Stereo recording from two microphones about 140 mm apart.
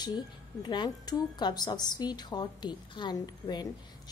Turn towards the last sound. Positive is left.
turn(degrees=30)  # may be behind; listen again after turning